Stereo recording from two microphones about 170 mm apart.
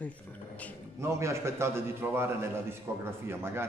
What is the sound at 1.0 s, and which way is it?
A man's voice, 15° right (ahead or behind).